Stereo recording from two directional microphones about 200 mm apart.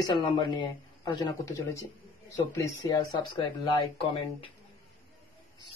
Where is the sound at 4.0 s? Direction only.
25° left (ahead or behind).